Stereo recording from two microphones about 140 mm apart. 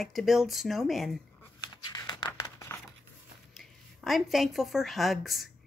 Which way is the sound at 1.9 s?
30° left (ahead or behind).